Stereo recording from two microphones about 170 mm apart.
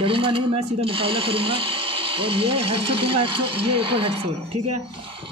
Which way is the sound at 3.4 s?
80° right.